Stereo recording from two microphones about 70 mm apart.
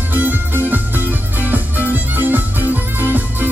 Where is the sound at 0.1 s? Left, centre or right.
Right.